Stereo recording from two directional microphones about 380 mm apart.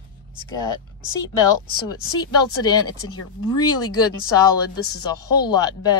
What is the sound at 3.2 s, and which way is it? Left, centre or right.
Speech, left.